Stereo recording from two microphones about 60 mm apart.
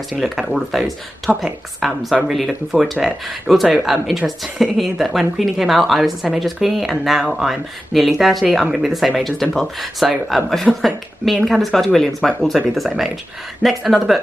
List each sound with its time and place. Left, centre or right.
0.2 s speech: centre